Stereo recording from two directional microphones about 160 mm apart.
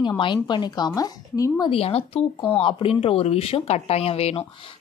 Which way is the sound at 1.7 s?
40° left (ahead or behind).